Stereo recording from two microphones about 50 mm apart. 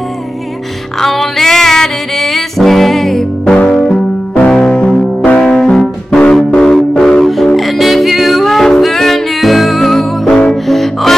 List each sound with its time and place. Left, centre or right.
1.0 s music: centre
4.7 s music: left
5.7 s music: centre
7.4 s music: centre
10.3 s music: centre
10.7 s music: centre